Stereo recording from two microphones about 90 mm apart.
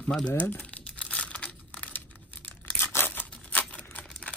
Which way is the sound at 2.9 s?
25° left (ahead or behind).